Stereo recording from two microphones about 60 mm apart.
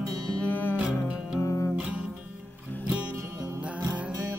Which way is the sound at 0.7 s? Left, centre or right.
Centre.